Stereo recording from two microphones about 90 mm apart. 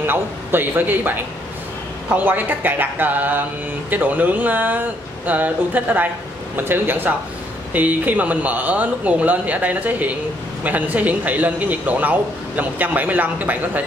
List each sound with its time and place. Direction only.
0.0 s speech: 25° right (ahead or behind)